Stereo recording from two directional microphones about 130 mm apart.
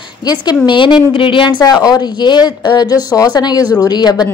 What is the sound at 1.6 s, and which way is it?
Speech, 30° left (ahead or behind).